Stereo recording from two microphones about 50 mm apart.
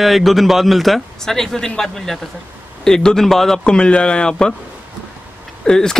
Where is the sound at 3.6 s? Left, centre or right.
Centre.